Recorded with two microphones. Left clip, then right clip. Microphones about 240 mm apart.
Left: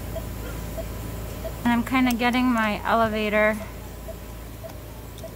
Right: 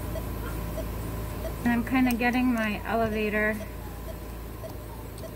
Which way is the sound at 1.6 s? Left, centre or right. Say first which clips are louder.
Left 4 dB; left.